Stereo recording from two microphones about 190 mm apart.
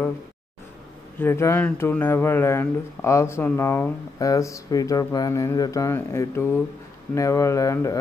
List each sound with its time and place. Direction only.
1.2 s speech: 10° left (ahead or behind)